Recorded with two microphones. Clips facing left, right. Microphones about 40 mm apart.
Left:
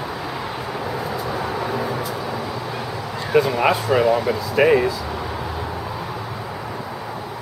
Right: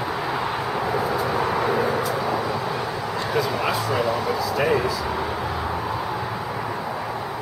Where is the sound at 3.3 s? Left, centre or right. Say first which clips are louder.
Left 8 dB; left.